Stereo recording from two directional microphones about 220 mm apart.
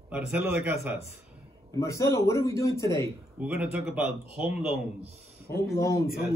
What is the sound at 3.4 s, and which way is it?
Speech, 5° right (ahead or behind).